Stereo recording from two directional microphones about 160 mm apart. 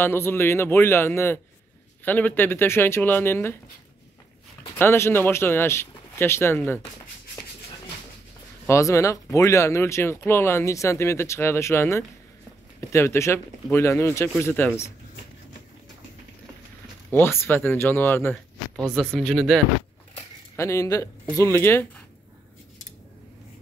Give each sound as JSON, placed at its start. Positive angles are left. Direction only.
{"t": 0.0, "sound": "speech", "side_deg": 15}
{"t": 4.7, "sound": "speech", "side_deg": 15}
{"t": 8.6, "sound": "speech", "side_deg": 20}
{"t": 17.1, "sound": "speech", "side_deg": 15}
{"t": 20.5, "sound": "speech", "side_deg": 20}